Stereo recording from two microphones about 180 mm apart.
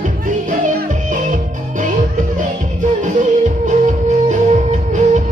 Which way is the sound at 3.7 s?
40° right (ahead or behind).